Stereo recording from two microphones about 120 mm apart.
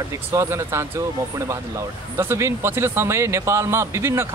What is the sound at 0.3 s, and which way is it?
A man's voice, 20° right (ahead or behind).